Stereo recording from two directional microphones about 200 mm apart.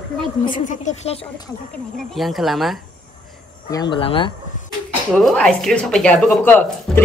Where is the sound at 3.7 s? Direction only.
20° left (ahead or behind).